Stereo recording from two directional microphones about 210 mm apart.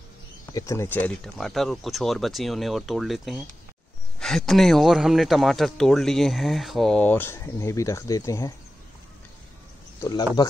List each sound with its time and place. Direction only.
0.5 s speech: 15° left (ahead or behind)
10.0 s speech: 20° left (ahead or behind)